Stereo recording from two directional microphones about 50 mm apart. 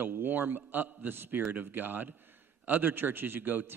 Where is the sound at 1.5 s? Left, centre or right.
Right.